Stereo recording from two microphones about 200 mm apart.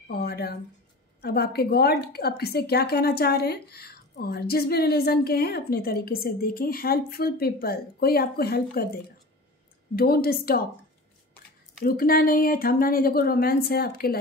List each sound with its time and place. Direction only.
0.1 s a woman's voice: 50° left (ahead or behind)
9.9 s a woman's voice: 50° left (ahead or behind)
11.8 s a woman's voice: 45° left (ahead or behind)